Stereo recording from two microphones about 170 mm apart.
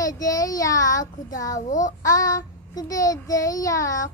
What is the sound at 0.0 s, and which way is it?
Child singing, 20° left (ahead or behind).